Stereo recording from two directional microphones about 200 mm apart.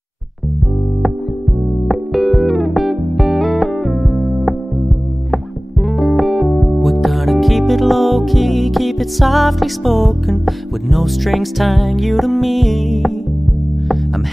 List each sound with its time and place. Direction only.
1.9 s music: centre (ahead or behind)